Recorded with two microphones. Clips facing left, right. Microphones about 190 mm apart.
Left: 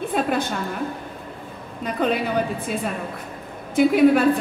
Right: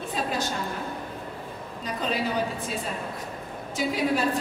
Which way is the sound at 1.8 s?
60° left (ahead or behind).